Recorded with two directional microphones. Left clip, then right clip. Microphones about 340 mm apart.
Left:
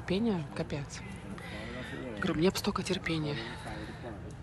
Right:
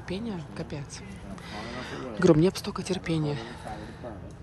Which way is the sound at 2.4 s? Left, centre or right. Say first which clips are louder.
Right 2 dB; centre.